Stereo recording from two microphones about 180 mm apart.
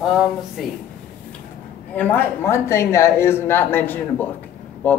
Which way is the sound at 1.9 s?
10° left (ahead or behind).